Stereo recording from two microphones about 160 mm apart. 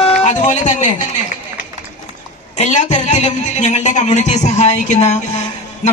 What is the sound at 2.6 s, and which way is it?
A woman's voice, 45° left (ahead or behind).